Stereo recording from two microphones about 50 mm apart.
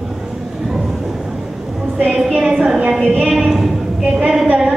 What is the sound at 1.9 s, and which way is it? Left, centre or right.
Speech, right.